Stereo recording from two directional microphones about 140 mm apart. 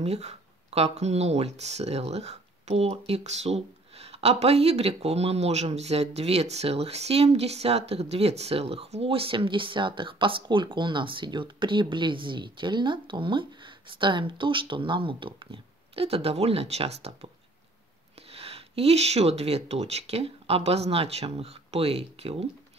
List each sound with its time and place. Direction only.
0.0 s speech: 50° right (ahead or behind)
18.3 s speech: 45° right (ahead or behind)